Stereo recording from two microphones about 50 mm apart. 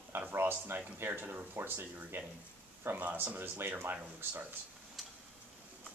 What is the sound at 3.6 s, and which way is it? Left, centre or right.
Speech, right.